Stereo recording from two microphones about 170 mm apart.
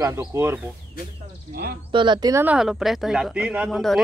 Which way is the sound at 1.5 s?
60° right (ahead or behind).